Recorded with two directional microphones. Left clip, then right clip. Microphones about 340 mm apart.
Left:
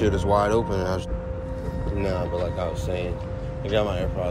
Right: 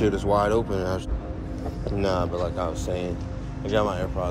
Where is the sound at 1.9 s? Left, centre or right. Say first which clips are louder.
Right 2 dB; centre.